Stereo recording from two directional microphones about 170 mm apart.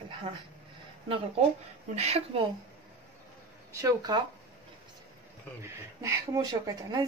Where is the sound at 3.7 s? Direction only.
20° right (ahead or behind).